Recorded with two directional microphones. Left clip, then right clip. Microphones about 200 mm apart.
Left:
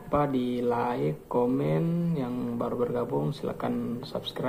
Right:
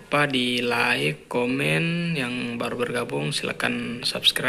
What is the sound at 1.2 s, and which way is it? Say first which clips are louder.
Speech: even; 20° right (ahead or behind).